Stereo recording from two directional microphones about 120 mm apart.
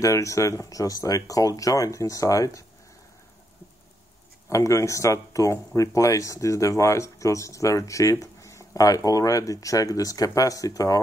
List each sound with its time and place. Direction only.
0.0 s speech: 25° left (ahead or behind)
4.5 s speech: 25° left (ahead or behind)